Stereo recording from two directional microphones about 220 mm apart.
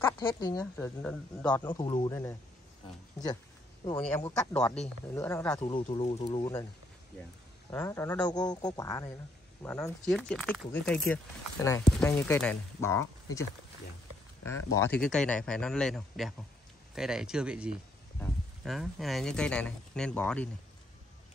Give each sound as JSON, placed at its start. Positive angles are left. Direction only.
{"t": 0.0, "sound": "speech", "side_deg": 15}
{"t": 1.6, "sound": "speech", "side_deg": 20}
{"t": 4.0, "sound": "speech", "side_deg": 10}
{"t": 5.6, "sound": "speech", "side_deg": 20}
{"t": 7.7, "sound": "speech", "side_deg": 10}
{"t": 14.8, "sound": "speech", "side_deg": 5}